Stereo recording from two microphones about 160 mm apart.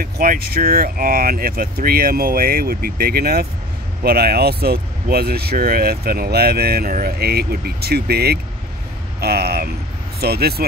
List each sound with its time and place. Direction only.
0.0 s speech: 65° right (ahead or behind)